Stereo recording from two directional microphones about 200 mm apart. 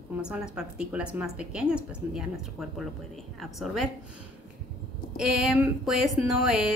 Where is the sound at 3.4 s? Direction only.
Centre (ahead or behind).